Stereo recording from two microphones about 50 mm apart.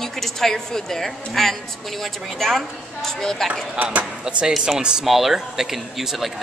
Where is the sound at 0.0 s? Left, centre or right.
Centre.